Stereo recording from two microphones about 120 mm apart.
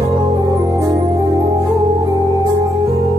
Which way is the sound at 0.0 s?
40° right (ahead or behind).